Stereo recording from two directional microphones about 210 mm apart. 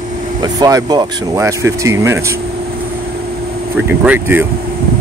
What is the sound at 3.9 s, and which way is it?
Speech, 10° right (ahead or behind).